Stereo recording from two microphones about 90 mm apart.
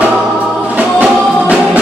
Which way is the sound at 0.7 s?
15° right (ahead or behind).